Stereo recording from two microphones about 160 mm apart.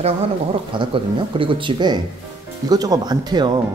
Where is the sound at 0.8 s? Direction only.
35° right (ahead or behind).